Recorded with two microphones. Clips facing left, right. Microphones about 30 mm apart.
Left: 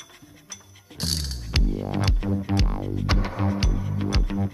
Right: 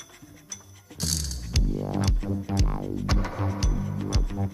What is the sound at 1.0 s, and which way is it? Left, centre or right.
Music, left.